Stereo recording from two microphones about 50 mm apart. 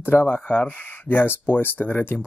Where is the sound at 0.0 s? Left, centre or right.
Left.